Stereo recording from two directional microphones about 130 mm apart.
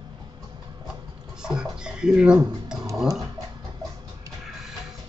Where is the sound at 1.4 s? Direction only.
5° right (ahead or behind).